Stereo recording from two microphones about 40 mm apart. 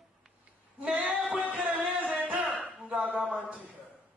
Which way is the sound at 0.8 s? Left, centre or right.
Right.